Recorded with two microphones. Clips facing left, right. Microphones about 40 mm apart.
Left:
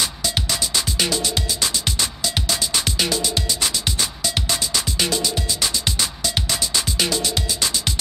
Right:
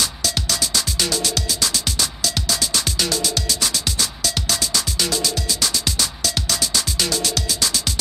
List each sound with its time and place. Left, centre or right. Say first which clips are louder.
0.0 s music: even; centre